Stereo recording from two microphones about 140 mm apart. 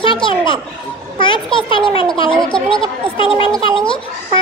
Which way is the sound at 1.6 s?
40° left (ahead or behind).